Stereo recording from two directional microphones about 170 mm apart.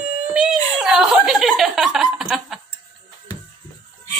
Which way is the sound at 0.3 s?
5° right (ahead or behind).